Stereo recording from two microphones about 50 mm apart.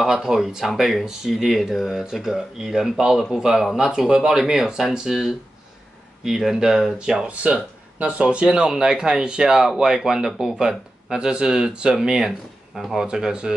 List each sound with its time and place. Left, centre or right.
0.0 s speech: centre
13.0 s speech: centre